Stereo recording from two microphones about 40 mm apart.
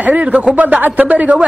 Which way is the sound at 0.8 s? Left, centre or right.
Right.